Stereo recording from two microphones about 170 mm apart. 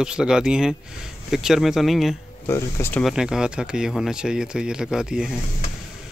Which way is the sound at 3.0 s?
5° right (ahead or behind).